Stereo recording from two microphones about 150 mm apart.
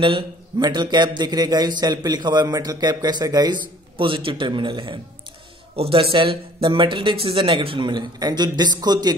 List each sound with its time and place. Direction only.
0.0 s speech: 30° right (ahead or behind)